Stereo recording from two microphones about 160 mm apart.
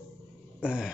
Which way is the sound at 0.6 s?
5° right (ahead or behind).